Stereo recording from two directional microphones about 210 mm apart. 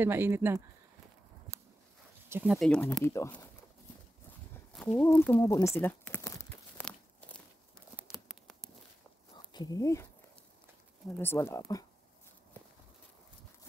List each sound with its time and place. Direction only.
0.0 s speech: 10° right (ahead or behind)
2.2 s speech: 10° right (ahead or behind); by 3.4 s 10° left (ahead or behind)
4.7 s speech: 5° left (ahead or behind)
5.8 s tearing: 10° left (ahead or behind)
7.9 s a sound: centre (ahead or behind)
9.5 s speech: 20° left (ahead or behind)
11.1 s speech: 10° left (ahead or behind)